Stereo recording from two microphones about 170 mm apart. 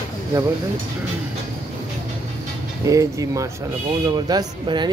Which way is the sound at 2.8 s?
20° right (ahead or behind).